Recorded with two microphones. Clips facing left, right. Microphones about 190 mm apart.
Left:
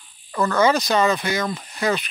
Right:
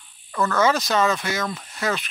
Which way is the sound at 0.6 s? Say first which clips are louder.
Left 2 dB; centre (ahead or behind).